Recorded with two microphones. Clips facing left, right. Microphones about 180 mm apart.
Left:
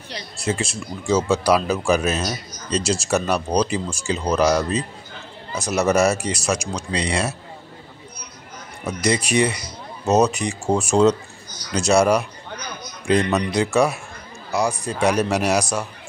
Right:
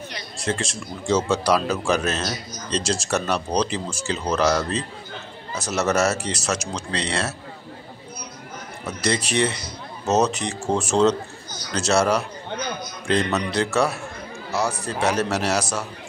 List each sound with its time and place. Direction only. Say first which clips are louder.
0.4 s speech: left 2 dB; 10° left (ahead or behind)
8.8 s speech: left 3 dB; 10° left (ahead or behind)